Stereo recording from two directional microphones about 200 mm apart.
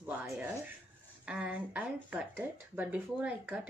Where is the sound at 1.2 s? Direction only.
5° right (ahead or behind).